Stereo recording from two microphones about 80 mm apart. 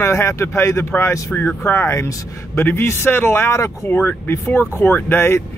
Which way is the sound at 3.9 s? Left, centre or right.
Left.